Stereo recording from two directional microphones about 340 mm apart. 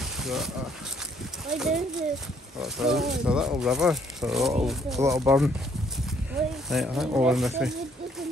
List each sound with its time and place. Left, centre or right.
0.2 s a sound: centre
1.5 s speech: centre
6.7 s speech: centre